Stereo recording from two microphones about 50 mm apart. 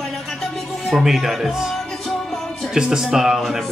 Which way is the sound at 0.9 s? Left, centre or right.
Centre.